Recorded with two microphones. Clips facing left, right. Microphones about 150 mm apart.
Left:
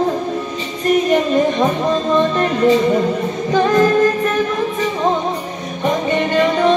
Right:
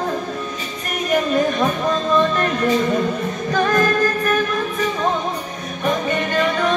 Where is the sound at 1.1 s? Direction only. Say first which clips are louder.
Left 3 dB; 20° left (ahead or behind).